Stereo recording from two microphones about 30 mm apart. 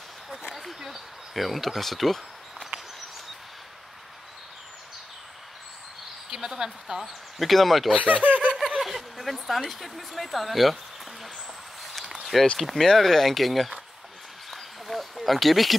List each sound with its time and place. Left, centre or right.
0.7 s speech: centre
1.3 s speech: centre
6.3 s speech: centre
7.0 s speech: centre
7.9 s speech: right
8.8 s speech: centre
12.3 s speech: centre
14.5 s a sound: centre